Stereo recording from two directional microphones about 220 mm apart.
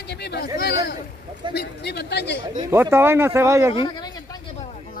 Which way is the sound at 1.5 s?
45° left (ahead or behind).